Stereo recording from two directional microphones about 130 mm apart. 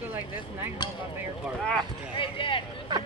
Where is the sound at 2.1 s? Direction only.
40° left (ahead or behind).